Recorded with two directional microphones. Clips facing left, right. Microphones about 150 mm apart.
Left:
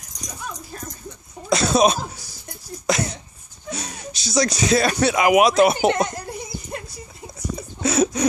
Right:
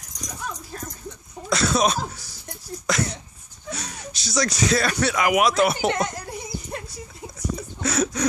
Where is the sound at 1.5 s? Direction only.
20° left (ahead or behind).